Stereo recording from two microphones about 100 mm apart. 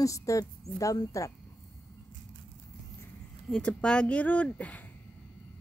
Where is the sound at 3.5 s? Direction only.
10° left (ahead or behind).